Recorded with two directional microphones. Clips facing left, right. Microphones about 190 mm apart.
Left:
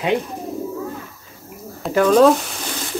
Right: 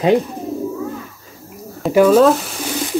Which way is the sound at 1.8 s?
5° right (ahead or behind).